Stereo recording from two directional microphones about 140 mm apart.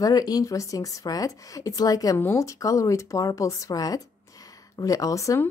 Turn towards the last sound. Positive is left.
turn(degrees=20)  # may be behind; listen again after turning